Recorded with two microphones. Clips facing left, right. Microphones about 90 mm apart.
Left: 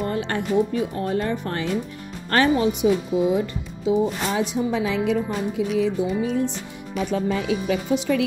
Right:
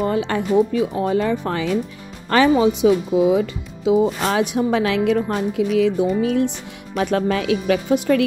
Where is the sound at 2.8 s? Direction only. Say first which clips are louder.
Right 3 dB; 90° right; by 5.6 s 60° right (ahead or behind).